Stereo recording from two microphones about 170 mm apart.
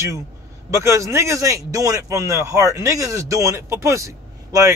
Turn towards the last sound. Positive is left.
turn(degrees=-20)  # may be behind; listen again after turning